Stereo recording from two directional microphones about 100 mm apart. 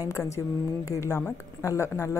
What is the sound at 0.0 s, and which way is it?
Speech, 35° left (ahead or behind).